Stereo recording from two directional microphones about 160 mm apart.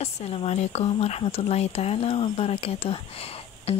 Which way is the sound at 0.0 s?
40° left (ahead or behind).